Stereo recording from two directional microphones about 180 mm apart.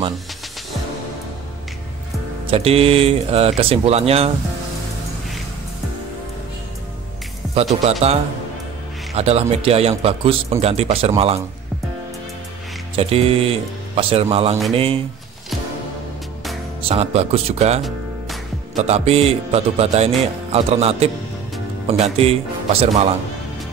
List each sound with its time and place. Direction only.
2.4 s speech: 35° right (ahead or behind)
7.4 s music: centre (ahead or behind)
7.8 s speech: 35° right (ahead or behind)
12.9 s speech: 35° right (ahead or behind)
16.8 s speech: 35° right (ahead or behind)